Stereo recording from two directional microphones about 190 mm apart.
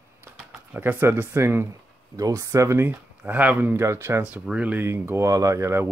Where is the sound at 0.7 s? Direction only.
10° right (ahead or behind).